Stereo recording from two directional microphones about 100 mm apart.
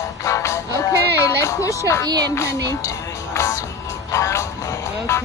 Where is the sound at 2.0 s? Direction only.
40° right (ahead or behind).